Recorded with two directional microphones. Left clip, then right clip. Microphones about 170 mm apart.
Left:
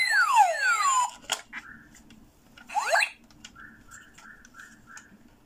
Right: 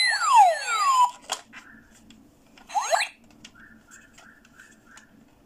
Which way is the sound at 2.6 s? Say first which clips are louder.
Even; 20° right (ahead or behind).